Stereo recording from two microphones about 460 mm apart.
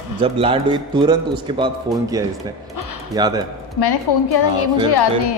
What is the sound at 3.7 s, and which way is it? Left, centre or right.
A woman's voice, left.